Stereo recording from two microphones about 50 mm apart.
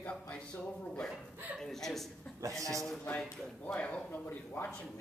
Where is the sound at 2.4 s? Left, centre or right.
Right.